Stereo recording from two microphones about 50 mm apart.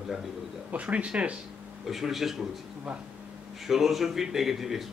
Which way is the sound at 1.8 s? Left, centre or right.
Centre.